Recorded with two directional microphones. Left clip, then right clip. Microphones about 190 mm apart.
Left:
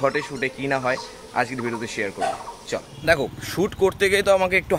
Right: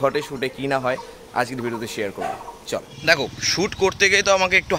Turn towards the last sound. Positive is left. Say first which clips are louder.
# right 1 dB
turn(degrees=5)  # may be behind; listen again after turning